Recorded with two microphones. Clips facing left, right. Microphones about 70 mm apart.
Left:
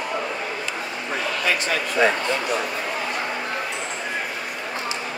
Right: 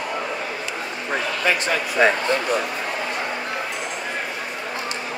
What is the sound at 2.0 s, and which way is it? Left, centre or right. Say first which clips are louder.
Speech: right 2 dB; right.